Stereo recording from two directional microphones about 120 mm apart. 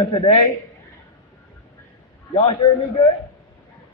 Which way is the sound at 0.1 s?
40° left (ahead or behind).